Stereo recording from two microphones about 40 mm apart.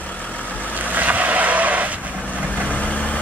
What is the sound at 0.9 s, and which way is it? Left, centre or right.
Vehicle, right.